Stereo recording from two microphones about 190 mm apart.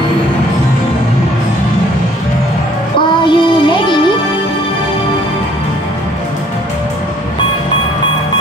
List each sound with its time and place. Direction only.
3.3 s music: 25° left (ahead or behind)